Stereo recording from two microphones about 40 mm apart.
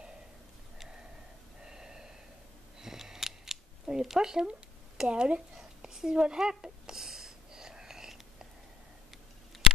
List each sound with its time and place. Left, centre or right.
1.6 s snort: centre
2.8 s scissors: centre
5.6 s a sound: centre
6.6 s whispering: centre